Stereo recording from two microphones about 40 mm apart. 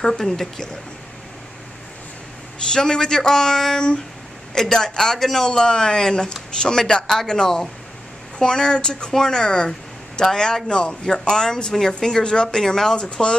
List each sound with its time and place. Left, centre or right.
0.0 s speech: centre
2.7 s speech: centre
12.9 s speech: left